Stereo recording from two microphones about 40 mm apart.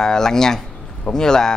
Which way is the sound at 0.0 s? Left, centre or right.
Centre.